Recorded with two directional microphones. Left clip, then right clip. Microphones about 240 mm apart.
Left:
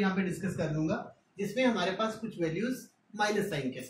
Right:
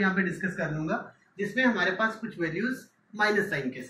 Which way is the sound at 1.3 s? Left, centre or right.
Left.